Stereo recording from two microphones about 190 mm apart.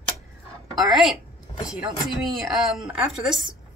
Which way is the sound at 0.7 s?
Centre (ahead or behind).